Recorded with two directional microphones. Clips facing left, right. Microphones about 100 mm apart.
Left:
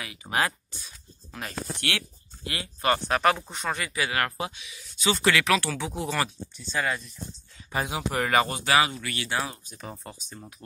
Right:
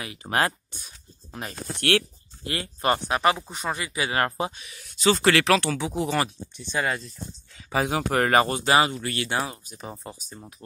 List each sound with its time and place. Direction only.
0.0 s speech: 45° right (ahead or behind)
1.8 s speech: 50° right (ahead or behind)
2.4 s speech: 35° right (ahead or behind)
3.1 s speech: 5° right (ahead or behind); by 4.6 s 30° right (ahead or behind)
4.6 s speech: 55° right (ahead or behind)
5.0 s speech: 35° right (ahead or behind)
5.8 s speech: 15° right (ahead or behind)
7.9 s speech: 50° right (ahead or behind)
9.8 s speech: 15° right (ahead or behind)